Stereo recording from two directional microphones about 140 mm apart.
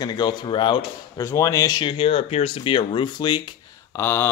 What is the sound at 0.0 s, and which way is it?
Speech, 30° left (ahead or behind).